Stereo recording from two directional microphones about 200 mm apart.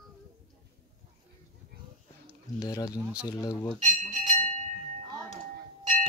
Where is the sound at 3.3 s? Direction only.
15° left (ahead or behind).